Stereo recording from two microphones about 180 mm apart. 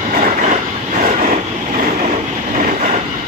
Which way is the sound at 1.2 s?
45° right (ahead or behind).